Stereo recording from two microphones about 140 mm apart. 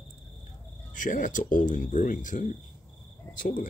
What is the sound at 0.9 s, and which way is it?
Speech, 65° left (ahead or behind).